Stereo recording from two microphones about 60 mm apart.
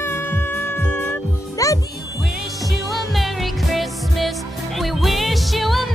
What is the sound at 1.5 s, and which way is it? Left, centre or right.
Music, left.